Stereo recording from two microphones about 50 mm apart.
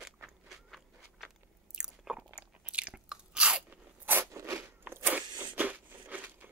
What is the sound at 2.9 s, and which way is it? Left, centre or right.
Chewing, centre.